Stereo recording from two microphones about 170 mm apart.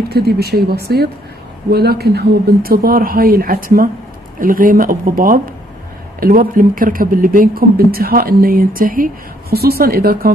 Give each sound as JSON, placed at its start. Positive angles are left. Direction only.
{"t": 0.1, "sound": "speech", "side_deg": -70}